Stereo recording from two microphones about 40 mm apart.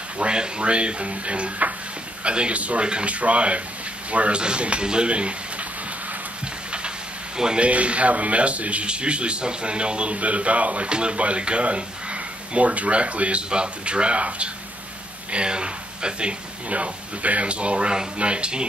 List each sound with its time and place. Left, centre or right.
0.2 s speech: right
2.8 s speech: right
7.3 s speech: centre
7.6 s speech: right